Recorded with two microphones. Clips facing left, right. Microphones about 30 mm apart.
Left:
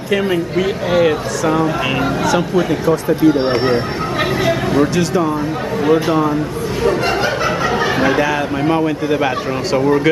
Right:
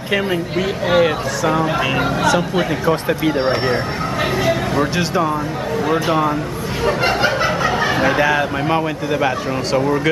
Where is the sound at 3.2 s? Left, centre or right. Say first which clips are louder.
Left 8 dB; right.